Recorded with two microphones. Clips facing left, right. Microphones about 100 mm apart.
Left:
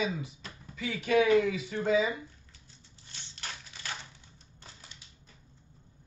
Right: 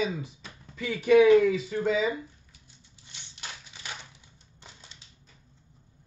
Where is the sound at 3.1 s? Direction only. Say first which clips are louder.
Even; 15° right (ahead or behind).